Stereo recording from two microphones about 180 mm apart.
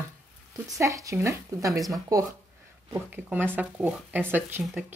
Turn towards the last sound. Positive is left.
turn(degrees=-10)  # may be behind; listen again after turning